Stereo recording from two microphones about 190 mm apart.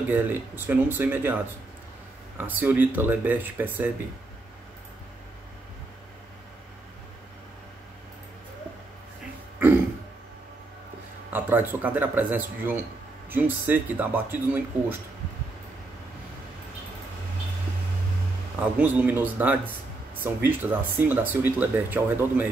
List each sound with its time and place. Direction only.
0.1 s speech: 10° right (ahead or behind)
11.2 s speech: 10° right (ahead or behind)
18.6 s speech: 10° right (ahead or behind)